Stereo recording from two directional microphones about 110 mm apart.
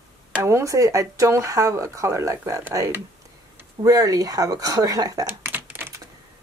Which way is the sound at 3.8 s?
35° right (ahead or behind).